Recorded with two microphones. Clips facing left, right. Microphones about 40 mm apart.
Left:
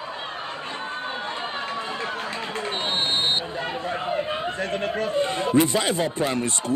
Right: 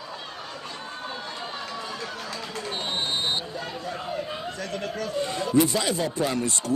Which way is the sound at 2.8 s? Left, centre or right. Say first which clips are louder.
Left 3 dB; left.